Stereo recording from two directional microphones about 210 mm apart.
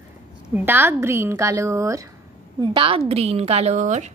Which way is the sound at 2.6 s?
25° right (ahead or behind).